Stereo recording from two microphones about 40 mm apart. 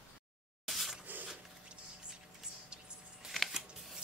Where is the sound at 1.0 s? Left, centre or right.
Right.